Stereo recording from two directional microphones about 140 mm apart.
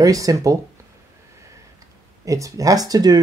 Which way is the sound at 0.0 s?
25° right (ahead or behind).